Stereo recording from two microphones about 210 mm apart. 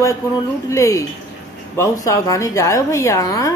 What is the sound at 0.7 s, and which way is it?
Speech, 15° left (ahead or behind).